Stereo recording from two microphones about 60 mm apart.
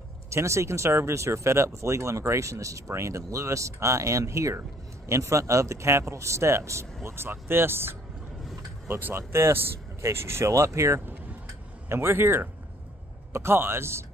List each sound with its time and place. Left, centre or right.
0.3 s speech: right
7.0 s speech: right
11.9 s speech: right